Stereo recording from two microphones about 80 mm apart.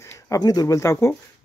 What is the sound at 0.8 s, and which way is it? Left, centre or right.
Speech, left.